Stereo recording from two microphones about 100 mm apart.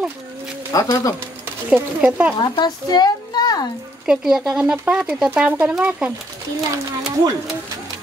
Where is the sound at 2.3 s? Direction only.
45° left (ahead or behind).